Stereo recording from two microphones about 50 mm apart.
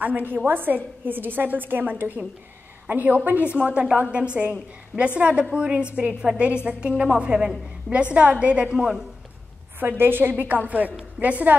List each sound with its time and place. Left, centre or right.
0.0 s a woman's voice: right; by 9.0 s centre
9.8 s a woman's voice: right
11.1 s a woman's voice: right